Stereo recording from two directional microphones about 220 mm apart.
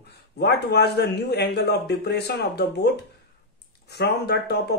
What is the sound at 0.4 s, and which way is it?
Speech, 50° left (ahead or behind).